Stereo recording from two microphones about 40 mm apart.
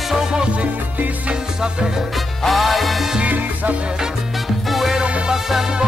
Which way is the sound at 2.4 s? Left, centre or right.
Centre.